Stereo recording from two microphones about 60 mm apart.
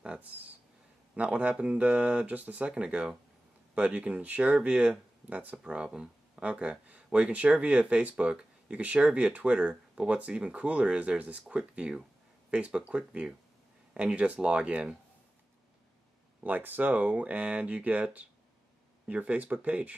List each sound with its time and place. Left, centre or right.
0.0 s a sound: centre
1.1 s speech: right
5.6 s speech: centre
16.4 s speech: right